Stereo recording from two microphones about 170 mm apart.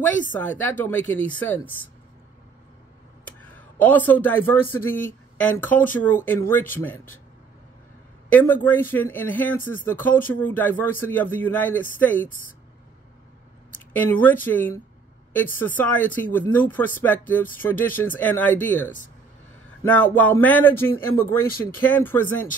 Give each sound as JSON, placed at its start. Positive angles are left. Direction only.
{"t": 0.3, "sound": "a man's voice", "side_deg": 10}
{"t": 3.3, "sound": "a sound", "side_deg": 10}
{"t": 3.8, "sound": "a man's voice", "side_deg": 10}
{"t": 8.3, "sound": "a man's voice", "side_deg": 10}
{"t": 13.7, "sound": "a man's voice", "side_deg": 10}